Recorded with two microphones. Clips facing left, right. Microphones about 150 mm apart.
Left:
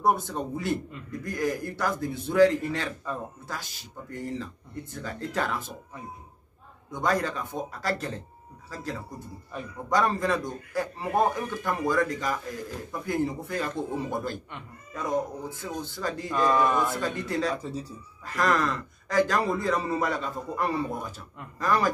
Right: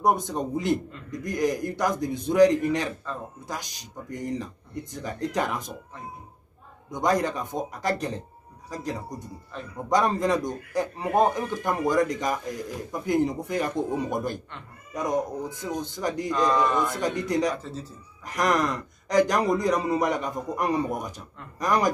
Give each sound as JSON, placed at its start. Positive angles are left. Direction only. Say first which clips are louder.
{"t": 0.0, "sound": "a man's voice", "louder": "right 2 dB", "side_deg": -20}
{"t": 6.9, "sound": "a man's voice", "louder": "right 3 dB", "side_deg": -20}
{"t": 9.5, "sound": "speech", "louder": "left 1 dB", "side_deg": 10}
{"t": 9.8, "sound": "a man's voice", "louder": "right 2 dB", "side_deg": -20}
{"t": 17.6, "sound": "speech", "louder": "left 2 dB", "side_deg": 10}
{"t": 18.2, "sound": "a man's voice", "louder": "right 1 dB", "side_deg": -20}